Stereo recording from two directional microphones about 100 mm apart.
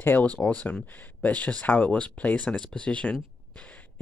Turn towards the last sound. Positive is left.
turn(degrees=10)  # may be behind; listen again after turning